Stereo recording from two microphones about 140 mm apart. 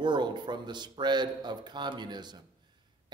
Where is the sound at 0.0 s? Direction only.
35° right (ahead or behind).